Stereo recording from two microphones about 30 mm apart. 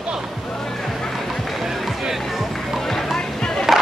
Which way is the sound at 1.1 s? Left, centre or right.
Centre.